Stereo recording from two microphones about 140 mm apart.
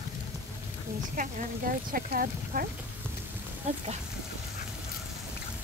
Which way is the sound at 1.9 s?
90° right.